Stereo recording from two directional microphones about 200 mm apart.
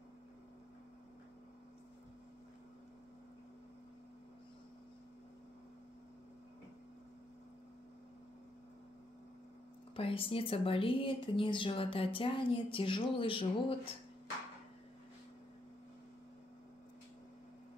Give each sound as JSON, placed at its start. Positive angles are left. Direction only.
{"t": 9.9, "sound": "speech", "side_deg": 25}